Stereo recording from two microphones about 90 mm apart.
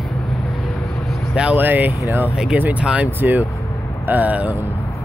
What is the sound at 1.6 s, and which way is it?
Speech, 20° right (ahead or behind).